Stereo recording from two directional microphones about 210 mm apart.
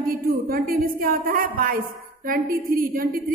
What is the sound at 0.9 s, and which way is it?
A woman's voice, 45° right (ahead or behind).